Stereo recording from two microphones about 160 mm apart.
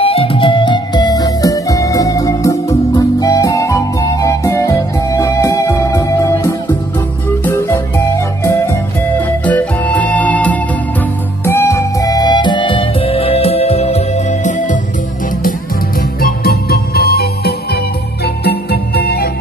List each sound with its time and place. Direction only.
0.0 s music: 35° left (ahead or behind); by 14.8 s 50° left (ahead or behind)
16.2 s music: 70° left (ahead or behind)